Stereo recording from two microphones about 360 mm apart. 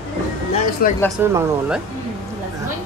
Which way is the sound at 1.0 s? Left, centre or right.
Centre.